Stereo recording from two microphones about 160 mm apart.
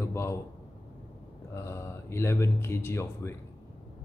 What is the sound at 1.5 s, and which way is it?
Speech, 15° left (ahead or behind).